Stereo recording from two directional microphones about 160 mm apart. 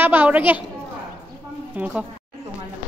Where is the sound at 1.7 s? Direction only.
10° right (ahead or behind).